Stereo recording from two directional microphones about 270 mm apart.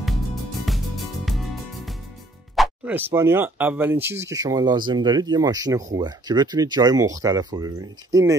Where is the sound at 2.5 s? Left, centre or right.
Centre.